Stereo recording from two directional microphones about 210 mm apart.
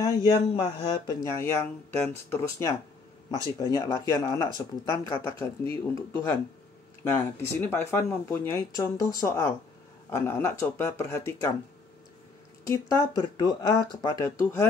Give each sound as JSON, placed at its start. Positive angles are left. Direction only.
{"t": 0.0, "sound": "speech", "side_deg": 20}
{"t": 7.1, "sound": "speech", "side_deg": 10}
{"t": 12.6, "sound": "speech", "side_deg": 15}